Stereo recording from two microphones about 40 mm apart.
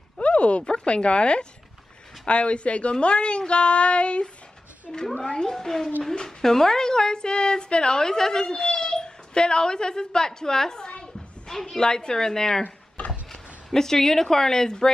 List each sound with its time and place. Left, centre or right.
0.2 s speech: left
5.0 s a woman's voice: centre
13.0 s a sound: left
13.3 s speech: centre